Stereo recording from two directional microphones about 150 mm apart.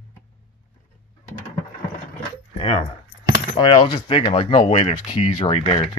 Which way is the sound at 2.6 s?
35° left (ahead or behind).